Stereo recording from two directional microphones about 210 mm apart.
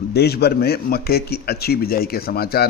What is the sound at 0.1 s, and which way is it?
Speech, 50° left (ahead or behind).